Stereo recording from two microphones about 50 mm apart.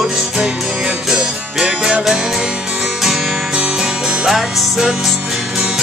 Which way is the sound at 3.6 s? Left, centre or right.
Centre.